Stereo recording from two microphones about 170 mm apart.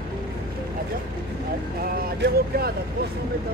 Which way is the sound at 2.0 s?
65° right (ahead or behind).